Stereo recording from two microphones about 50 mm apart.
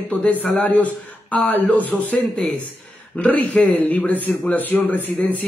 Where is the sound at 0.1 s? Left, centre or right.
Left.